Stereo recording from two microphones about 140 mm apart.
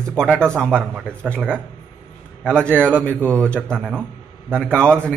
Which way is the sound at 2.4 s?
10° left (ahead or behind).